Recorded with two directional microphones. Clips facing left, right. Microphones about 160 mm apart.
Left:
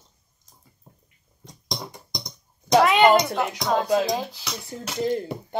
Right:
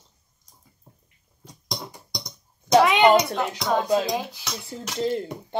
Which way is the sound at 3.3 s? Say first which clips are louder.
Left 1 dB; 10° left (ahead or behind).